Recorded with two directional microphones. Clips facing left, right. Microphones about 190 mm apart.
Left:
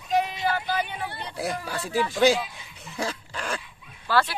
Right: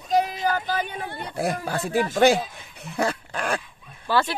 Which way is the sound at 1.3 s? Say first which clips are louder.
Right 4 dB; 60° right (ahead or behind).